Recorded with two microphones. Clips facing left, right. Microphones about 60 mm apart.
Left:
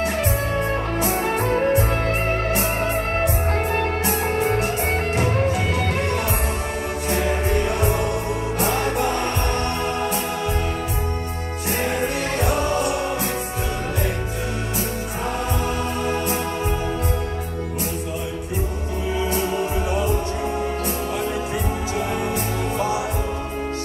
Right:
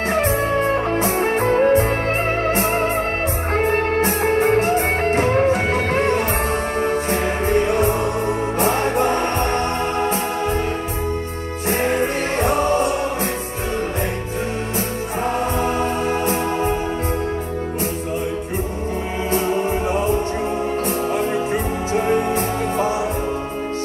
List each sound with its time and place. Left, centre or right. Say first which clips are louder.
0.1 s music: right 5 dB; right
11.7 s music: right 4 dB; right
15.6 s music: right 4 dB; right
21.9 s music: right 8 dB; right